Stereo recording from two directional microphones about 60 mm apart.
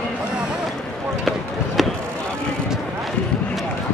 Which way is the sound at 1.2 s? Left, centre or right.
Centre.